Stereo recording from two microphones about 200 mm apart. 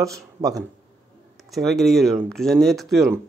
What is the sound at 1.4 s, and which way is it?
A man's voice, centre (ahead or behind).